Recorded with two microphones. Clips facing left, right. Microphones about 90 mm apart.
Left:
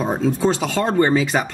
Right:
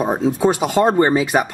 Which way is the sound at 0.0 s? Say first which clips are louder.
Right 2 dB; 15° right (ahead or behind).